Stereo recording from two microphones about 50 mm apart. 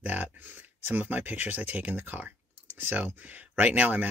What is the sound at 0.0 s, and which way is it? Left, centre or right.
Speech, right.